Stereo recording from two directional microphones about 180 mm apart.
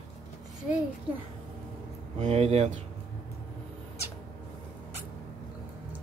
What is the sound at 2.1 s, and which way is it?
Speech, 35° right (ahead or behind).